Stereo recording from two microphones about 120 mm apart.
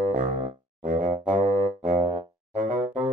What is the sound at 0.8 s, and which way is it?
Music, 90° right.